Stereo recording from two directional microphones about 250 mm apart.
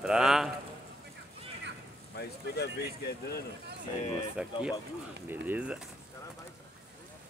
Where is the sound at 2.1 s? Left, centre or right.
Left.